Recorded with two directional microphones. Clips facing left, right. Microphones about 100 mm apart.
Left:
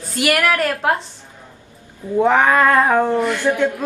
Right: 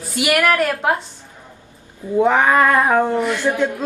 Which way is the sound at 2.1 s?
15° right (ahead or behind).